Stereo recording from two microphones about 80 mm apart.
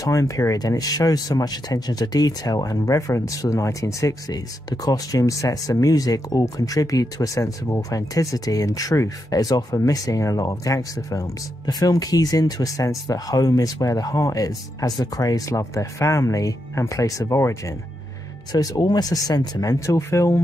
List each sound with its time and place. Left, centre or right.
0.0 s speech: left